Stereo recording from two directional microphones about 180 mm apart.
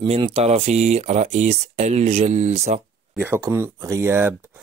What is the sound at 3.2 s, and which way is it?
Speech, 15° right (ahead or behind).